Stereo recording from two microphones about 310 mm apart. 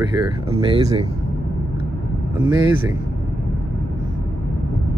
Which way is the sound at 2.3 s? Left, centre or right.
Centre.